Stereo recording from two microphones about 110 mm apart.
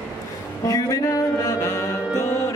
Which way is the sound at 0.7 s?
30° left (ahead or behind).